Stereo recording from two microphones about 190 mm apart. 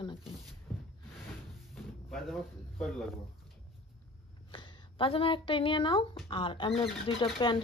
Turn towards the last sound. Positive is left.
turn(degrees=25)  # may be behind; listen again after turning